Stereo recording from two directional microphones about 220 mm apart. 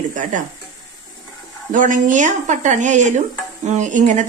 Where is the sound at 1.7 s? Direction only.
35° right (ahead or behind).